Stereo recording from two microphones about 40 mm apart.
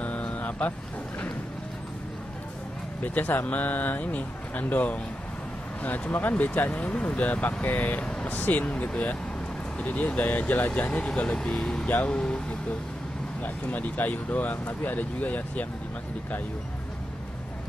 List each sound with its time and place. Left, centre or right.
0.0 s vehicle: left
3.0 s speech: left
6.8 s speech: left
8.0 s vehicle: left
8.3 s speech: left
8.7 s speech: left
10.8 s speech: left
11.5 s speech: centre
13.4 s speech: left